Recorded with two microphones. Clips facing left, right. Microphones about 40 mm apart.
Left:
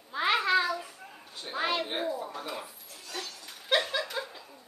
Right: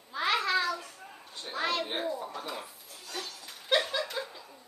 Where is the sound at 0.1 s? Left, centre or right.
Centre.